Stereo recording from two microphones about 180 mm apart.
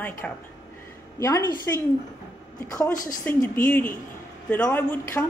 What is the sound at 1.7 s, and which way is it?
Speech, 15° left (ahead or behind).